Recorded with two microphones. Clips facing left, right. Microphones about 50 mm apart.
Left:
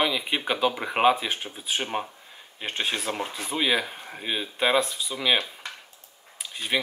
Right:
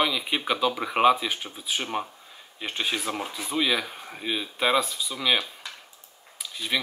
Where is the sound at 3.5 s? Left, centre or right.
Left.